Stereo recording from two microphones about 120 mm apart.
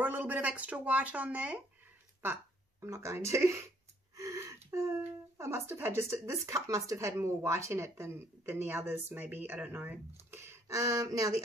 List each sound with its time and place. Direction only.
0.0 s speech: 15° right (ahead or behind)
2.8 s a sound: 25° right (ahead or behind)
5.4 s speech: 20° right (ahead or behind)